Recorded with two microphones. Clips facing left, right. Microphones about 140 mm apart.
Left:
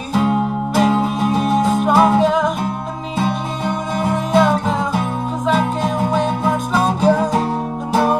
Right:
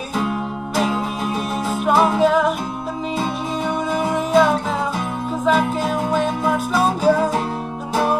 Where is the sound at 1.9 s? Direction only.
Centre (ahead or behind).